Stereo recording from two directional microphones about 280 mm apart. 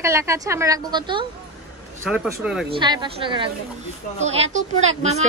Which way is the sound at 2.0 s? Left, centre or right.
Centre.